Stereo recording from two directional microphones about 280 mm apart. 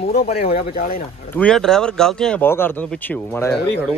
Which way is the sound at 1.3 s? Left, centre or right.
Centre.